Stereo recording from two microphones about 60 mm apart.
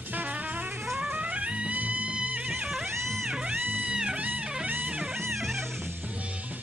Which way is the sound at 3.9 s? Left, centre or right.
Centre.